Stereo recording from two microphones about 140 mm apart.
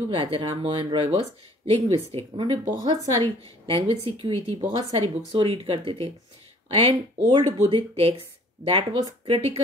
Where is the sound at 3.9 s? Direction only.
45° right (ahead or behind).